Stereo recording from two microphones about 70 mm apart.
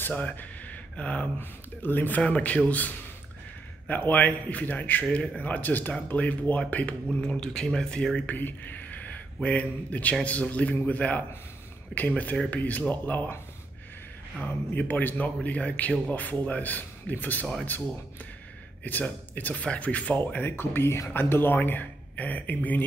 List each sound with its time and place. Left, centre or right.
0.0 s speech: left
7.1 s speech: centre
8.3 s speech: left
14.4 s speech: left
18.9 s speech: left
20.4 s speech: left